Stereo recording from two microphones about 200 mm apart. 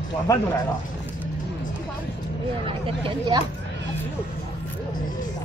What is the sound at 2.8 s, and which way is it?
Speech, 25° right (ahead or behind).